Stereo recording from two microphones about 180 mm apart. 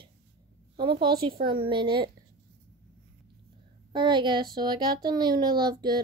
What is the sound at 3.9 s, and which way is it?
A child's voice, 25° right (ahead or behind).